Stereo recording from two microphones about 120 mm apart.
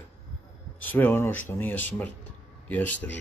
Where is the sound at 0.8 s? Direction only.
15° left (ahead or behind).